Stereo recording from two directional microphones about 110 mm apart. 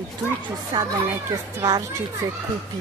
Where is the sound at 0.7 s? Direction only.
35° right (ahead or behind).